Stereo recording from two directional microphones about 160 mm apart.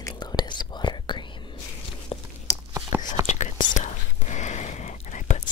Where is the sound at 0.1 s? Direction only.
25° left (ahead or behind).